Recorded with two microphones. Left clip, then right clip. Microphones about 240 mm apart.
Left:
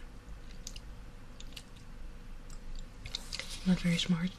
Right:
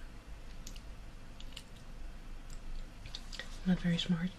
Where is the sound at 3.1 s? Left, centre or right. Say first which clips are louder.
Left 6 dB; centre.